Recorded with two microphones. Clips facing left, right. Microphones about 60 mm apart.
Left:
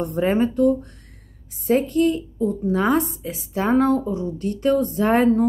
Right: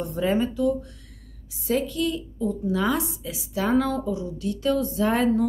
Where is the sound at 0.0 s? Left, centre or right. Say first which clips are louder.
Left 4 dB; left.